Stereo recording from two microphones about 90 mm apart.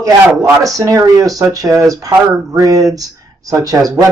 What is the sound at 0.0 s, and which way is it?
A man's voice, 40° right (ahead or behind).